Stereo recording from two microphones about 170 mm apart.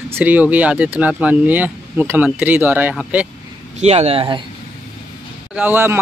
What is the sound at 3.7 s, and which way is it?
Speech, 40° right (ahead or behind).